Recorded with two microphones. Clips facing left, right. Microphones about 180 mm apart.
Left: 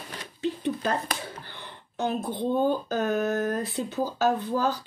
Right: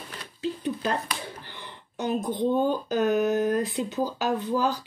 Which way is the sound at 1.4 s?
10° right (ahead or behind).